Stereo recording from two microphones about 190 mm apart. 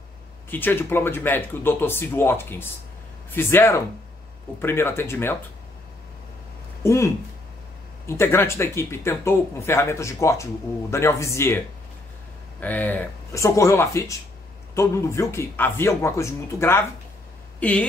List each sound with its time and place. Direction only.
0.5 s speech: 10° left (ahead or behind)
6.8 s speech: 15° left (ahead or behind)
8.1 s speech: 15° left (ahead or behind)